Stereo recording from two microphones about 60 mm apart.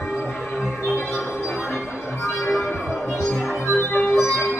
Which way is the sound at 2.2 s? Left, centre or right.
Left.